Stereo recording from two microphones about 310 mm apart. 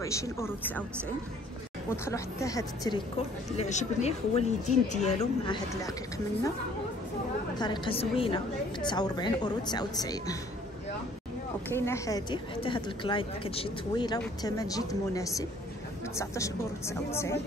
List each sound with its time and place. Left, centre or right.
0.0 s a woman's voice: centre
3.5 s speech: left
5.7 s a woman's voice: centre
7.5 s a woman's voice: centre
11.7 s a woman's voice: centre